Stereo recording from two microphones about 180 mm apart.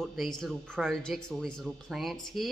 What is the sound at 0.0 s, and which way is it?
Speech, centre (ahead or behind).